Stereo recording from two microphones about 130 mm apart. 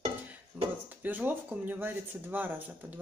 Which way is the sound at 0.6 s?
15° right (ahead or behind).